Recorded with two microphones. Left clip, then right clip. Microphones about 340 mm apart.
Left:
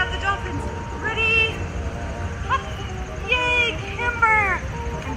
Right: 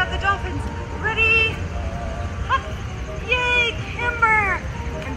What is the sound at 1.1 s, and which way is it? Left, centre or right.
Music, centre.